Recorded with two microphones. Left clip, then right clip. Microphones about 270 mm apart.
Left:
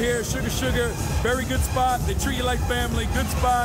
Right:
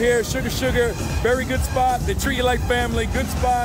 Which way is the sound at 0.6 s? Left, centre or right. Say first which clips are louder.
Right 5 dB; centre.